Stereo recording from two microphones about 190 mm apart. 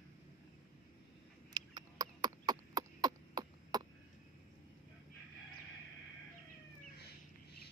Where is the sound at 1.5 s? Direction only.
20° right (ahead or behind).